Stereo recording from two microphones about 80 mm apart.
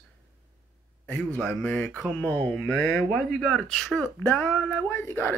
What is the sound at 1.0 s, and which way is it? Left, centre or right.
A man's voice, centre.